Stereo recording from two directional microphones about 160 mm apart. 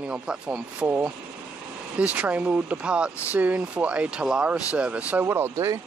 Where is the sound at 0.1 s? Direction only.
5° right (ahead or behind).